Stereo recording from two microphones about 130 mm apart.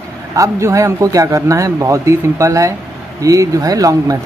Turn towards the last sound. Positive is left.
turn(degrees=-25)  # may be behind; listen again after turning